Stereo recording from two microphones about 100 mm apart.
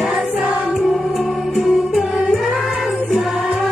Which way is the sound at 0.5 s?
15° right (ahead or behind).